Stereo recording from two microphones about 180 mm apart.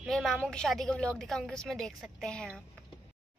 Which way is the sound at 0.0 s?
Centre (ahead or behind).